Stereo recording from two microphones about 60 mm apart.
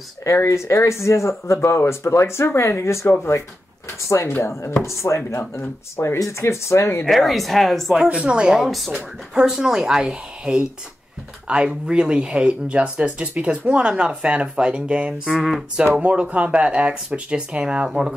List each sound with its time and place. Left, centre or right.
0.5 s speech: left
5.4 s speech: left
7.1 s speech: centre
8.2 s speech: centre
8.6 s speech: centre
8.9 s speech: centre
15.3 s speech: centre
15.9 s speech: right